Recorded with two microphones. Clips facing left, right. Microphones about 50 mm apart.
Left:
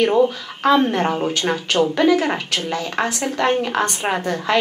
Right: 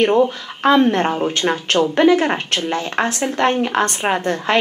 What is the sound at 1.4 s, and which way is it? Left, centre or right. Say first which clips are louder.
Speech: right 3 dB; centre.